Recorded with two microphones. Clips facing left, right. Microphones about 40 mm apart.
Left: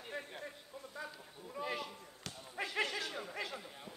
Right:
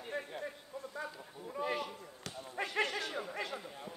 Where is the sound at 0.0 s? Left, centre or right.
Centre.